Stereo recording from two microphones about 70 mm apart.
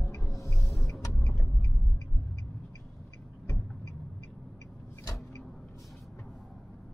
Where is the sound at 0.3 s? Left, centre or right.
Left.